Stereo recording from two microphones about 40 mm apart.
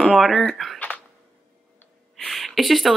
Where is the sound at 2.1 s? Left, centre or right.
Centre.